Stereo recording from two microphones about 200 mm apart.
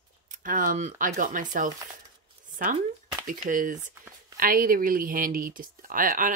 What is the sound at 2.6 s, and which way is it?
A woman's voice, 40° right (ahead or behind).